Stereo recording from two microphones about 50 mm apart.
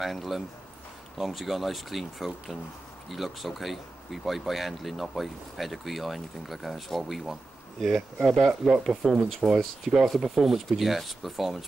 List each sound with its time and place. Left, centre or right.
0.0 s speech: centre